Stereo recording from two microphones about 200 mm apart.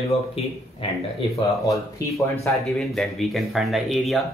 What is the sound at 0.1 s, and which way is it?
Speech, 30° left (ahead or behind).